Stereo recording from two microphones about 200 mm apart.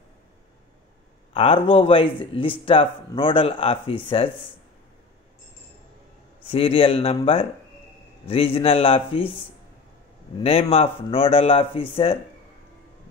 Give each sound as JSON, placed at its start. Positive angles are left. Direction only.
{"t": 1.3, "sound": "speech", "side_deg": 30}
{"t": 6.5, "sound": "speech", "side_deg": 30}
{"t": 10.4, "sound": "speech", "side_deg": 30}